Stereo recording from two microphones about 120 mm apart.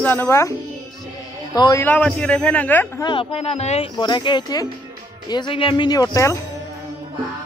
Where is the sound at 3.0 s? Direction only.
45° left (ahead or behind); by 3.9 s 60° left (ahead or behind).